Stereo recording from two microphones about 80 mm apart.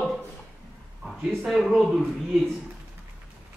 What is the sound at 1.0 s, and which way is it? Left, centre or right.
A man's voice, centre.